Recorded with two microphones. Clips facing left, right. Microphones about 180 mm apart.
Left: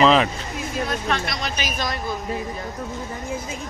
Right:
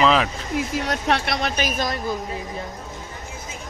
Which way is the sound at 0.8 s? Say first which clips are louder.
Left 1 dB; 75° right (ahead or behind).